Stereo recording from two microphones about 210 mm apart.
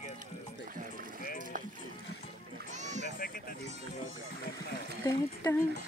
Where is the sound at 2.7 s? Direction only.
35° right (ahead or behind).